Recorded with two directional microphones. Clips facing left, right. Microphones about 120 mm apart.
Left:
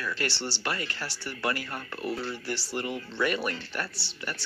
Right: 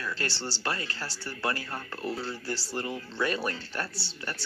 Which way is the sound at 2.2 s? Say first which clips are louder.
Left 1 dB; 35° right (ahead or behind).